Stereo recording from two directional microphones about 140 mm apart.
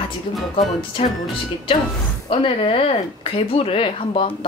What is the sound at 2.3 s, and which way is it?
Speech, 40° left (ahead or behind).